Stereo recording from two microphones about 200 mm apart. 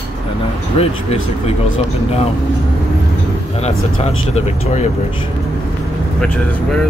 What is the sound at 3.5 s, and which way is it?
Speech, 30° left (ahead or behind).